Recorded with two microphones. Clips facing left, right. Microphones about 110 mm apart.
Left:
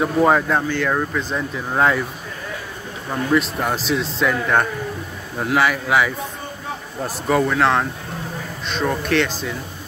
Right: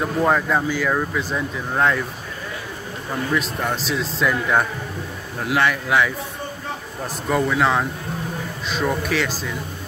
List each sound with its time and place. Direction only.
0.0 s speech: 5° left (ahead or behind)
3.3 s speech: 5° left (ahead or behind)
7.2 s speech: centre (ahead or behind)